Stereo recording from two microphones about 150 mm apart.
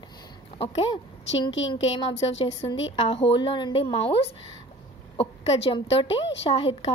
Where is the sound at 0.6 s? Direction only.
40° left (ahead or behind).